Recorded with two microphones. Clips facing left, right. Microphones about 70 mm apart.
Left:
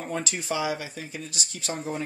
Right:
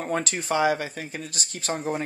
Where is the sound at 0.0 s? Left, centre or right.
Right.